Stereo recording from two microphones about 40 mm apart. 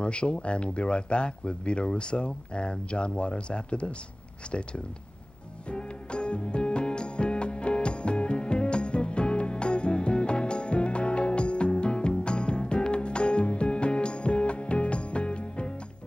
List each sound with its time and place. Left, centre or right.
0.0 s speech: left
5.7 s music: left